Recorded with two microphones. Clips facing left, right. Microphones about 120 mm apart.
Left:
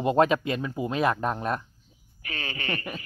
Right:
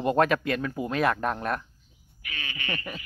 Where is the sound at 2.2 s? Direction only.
35° left (ahead or behind).